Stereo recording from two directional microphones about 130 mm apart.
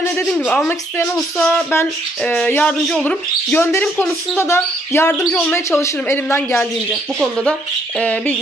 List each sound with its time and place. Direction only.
0.3 s speech: 10° left (ahead or behind)
6.9 s speech: 5° left (ahead or behind)